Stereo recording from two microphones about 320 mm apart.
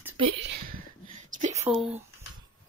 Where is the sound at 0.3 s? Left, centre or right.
Right.